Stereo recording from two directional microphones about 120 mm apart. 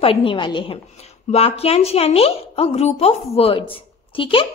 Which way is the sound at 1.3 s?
60° left (ahead or behind).